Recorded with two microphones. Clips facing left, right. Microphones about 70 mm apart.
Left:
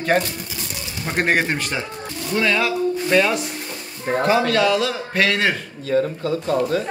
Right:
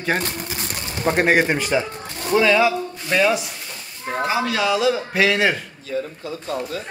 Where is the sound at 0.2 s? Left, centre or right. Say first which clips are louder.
Right 2 dB; right.